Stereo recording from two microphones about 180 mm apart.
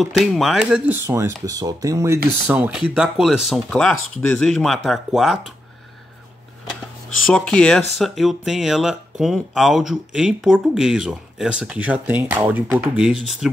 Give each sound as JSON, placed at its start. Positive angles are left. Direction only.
{"t": 0.0, "sound": "speech", "side_deg": 0}
{"t": 7.3, "sound": "speech", "side_deg": 5}